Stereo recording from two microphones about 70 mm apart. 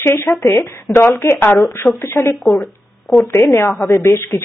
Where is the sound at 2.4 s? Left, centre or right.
Centre.